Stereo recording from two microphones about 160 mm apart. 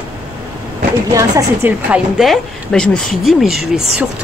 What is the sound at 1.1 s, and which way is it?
Speech, 20° right (ahead or behind).